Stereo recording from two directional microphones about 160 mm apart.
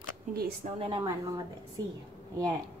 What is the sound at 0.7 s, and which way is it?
Speech, 35° right (ahead or behind).